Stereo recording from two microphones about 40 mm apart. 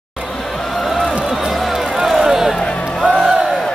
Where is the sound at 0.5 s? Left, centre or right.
Centre.